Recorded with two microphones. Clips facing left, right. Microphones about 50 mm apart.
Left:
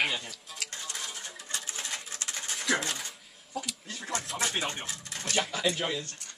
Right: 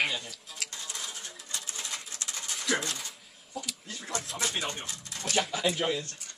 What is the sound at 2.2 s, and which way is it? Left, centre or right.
Dog, left.